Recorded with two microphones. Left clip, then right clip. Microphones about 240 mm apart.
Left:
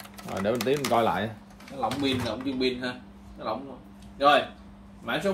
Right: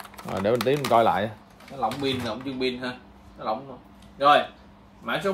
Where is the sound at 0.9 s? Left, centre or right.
Right.